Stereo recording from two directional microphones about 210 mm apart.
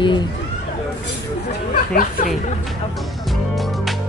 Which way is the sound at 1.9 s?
40° left (ahead or behind).